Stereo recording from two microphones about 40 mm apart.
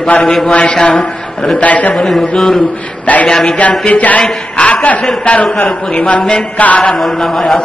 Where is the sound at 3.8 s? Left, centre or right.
Left.